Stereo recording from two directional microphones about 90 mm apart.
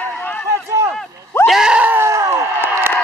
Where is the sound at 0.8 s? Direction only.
35° right (ahead or behind).